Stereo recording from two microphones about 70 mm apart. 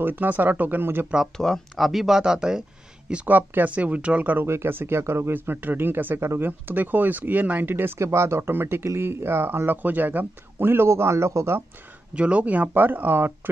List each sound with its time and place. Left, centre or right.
0.0 s speech: right
1.3 s speech: centre
1.9 s speech: centre; by 4.5 s right
4.5 s speech: right
6.7 s speech: right
12.2 s speech: centre